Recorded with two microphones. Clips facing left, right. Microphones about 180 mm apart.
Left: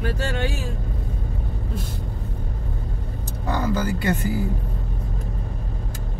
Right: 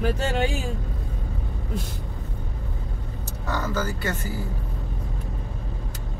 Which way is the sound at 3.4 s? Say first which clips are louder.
Left 4 dB; 15° left (ahead or behind).